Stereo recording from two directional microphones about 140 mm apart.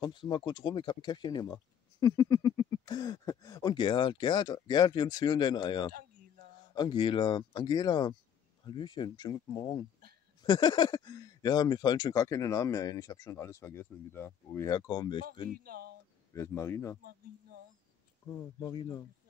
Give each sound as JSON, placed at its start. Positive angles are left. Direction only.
{"t": 0.0, "sound": "speech", "side_deg": 35}
{"t": 14.8, "sound": "speech", "side_deg": 30}
{"t": 15.5, "sound": "speech", "side_deg": -90}
{"t": 16.3, "sound": "speech", "side_deg": 20}
{"t": 18.6, "sound": "speech", "side_deg": 30}